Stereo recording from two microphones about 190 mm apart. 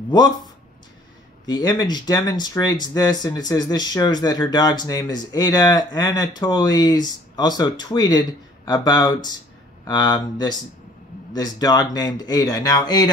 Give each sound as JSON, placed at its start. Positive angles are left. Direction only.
{"t": 0.1, "sound": "speech", "side_deg": 20}
{"t": 1.5, "sound": "speech", "side_deg": 20}